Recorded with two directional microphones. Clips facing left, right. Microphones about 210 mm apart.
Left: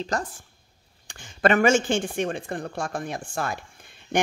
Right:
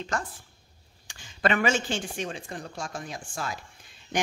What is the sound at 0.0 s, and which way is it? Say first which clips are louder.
Speech: left 4 dB; 40° left (ahead or behind).